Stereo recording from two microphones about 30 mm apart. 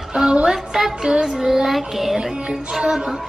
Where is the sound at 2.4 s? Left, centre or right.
Right.